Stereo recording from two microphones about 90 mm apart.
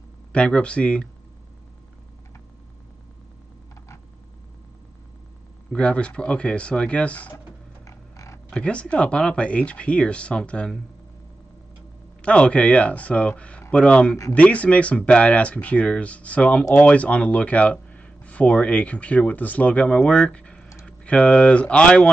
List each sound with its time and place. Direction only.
0.3 s speech: 10° left (ahead or behind)
5.7 s speech: 10° left (ahead or behind)
7.8 s a sound: 35° left (ahead or behind)
8.5 s speech: 10° left (ahead or behind)
12.2 s speech: 10° left (ahead or behind)